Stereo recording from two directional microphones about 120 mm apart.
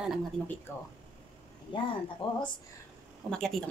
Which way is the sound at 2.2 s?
50° left (ahead or behind).